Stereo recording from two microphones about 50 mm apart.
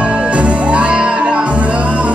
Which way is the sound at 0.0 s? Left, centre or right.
Right.